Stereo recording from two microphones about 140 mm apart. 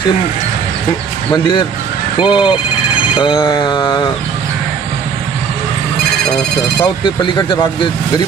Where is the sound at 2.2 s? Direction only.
35° left (ahead or behind).